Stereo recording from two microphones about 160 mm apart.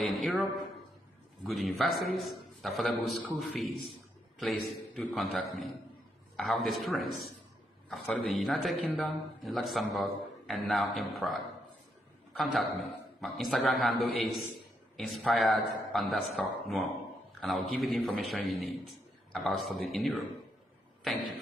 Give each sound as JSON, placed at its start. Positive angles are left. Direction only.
{"t": 0.0, "sound": "a man's voice", "side_deg": 0}
{"t": 4.4, "sound": "a man's voice", "side_deg": 0}
{"t": 13.2, "sound": "a man's voice", "side_deg": 0}
{"t": 21.0, "sound": "a sound", "side_deg": 0}